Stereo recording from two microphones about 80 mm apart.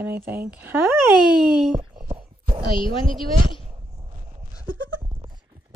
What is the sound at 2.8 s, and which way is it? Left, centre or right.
Speech, left.